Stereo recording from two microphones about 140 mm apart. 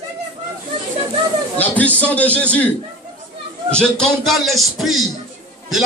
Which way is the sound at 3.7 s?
5° left (ahead or behind).